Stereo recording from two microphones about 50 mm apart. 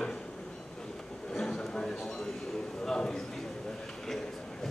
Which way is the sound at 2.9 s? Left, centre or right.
Centre.